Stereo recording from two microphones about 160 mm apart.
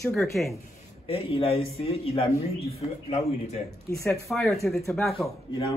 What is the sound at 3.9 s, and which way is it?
Speech, 15° left (ahead or behind).